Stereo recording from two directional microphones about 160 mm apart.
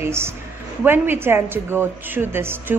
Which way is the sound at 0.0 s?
15° right (ahead or behind).